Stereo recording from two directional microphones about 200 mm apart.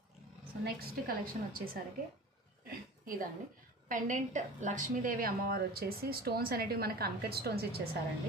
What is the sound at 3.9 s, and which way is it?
A woman's voice, 40° right (ahead or behind).